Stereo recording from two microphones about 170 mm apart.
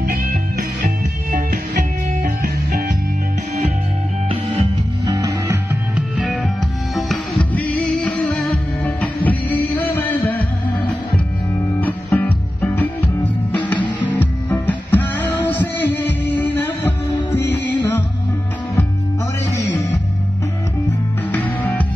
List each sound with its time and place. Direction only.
5.0 s music: 20° right (ahead or behind)
6.2 s music: 5° left (ahead or behind)
11.8 s music: 10° left (ahead or behind)
19.5 s music: 15° left (ahead or behind)
21.3 s music: 10° left (ahead or behind)